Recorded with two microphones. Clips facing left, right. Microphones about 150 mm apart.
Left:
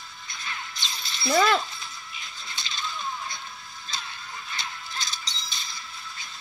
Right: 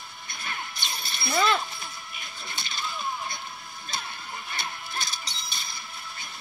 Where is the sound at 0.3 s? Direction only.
60° right (ahead or behind).